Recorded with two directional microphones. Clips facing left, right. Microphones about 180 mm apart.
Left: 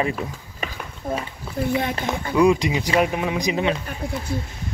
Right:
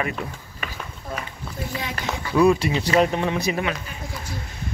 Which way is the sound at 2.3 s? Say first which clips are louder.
Even; 15° left (ahead or behind).